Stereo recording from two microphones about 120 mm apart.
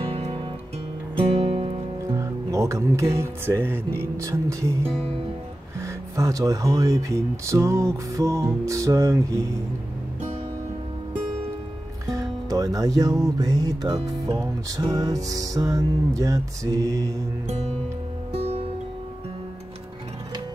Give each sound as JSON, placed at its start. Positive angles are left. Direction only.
{"t": 0.0, "sound": "music", "side_deg": -55}
{"t": 2.0, "sound": "speech", "side_deg": -30}
{"t": 5.8, "sound": "music", "side_deg": -25}
{"t": 12.1, "sound": "music", "side_deg": -30}
{"t": 18.3, "sound": "music", "side_deg": -55}